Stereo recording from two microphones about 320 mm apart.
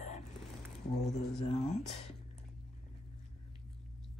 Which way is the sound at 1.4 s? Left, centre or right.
Centre.